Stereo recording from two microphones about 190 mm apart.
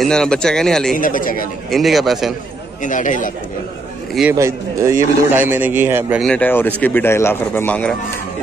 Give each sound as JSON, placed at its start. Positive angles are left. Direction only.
{"t": 0.0, "sound": "speech", "side_deg": 5}
{"t": 0.9, "sound": "speech", "side_deg": 45}
{"t": 1.7, "sound": "speech", "side_deg": 0}
{"t": 2.8, "sound": "speech", "side_deg": 40}
{"t": 4.3, "sound": "a man's voice", "side_deg": -15}
{"t": 6.2, "sound": "speech", "side_deg": 5}